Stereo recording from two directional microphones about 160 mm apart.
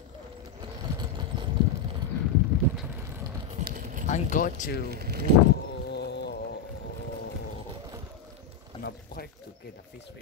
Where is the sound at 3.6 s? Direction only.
60° right (ahead or behind).